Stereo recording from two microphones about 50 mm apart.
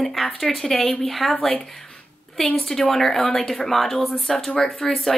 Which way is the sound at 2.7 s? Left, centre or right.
Centre.